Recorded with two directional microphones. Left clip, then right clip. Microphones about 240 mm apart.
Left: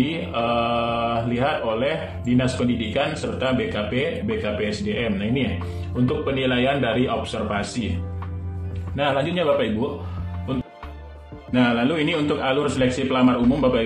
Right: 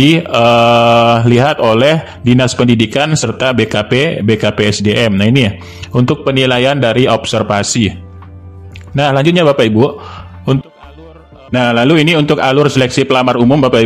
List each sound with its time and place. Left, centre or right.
0.1 s mantra: right
8.9 s mantra: right
11.5 s mantra: right